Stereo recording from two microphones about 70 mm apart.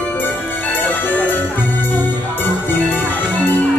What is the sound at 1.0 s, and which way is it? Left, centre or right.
Music, left.